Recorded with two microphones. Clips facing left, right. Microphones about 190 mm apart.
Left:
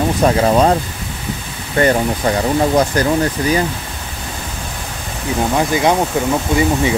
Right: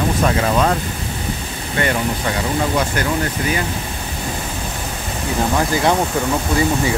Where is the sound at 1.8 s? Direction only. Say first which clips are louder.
Left 6 dB; 40° left (ahead or behind).